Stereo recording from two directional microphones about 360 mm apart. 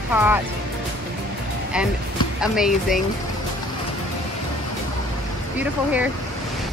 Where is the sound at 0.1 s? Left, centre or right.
Centre.